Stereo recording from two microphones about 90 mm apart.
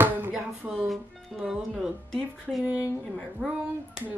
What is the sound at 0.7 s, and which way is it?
Speech, centre (ahead or behind).